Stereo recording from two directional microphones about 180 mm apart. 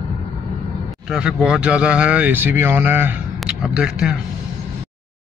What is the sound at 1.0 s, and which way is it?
Speech, 5° right (ahead or behind).